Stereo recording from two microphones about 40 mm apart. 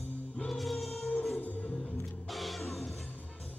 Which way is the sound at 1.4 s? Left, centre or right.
Left.